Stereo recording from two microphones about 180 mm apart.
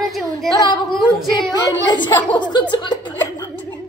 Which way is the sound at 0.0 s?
Centre (ahead or behind).